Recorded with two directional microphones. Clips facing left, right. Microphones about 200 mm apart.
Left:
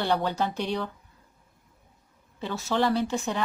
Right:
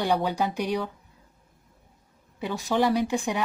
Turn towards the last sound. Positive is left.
turn(degrees=-15)  # may be behind; listen again after turning